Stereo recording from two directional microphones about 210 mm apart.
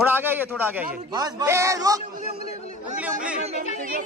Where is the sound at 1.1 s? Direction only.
15° right (ahead or behind).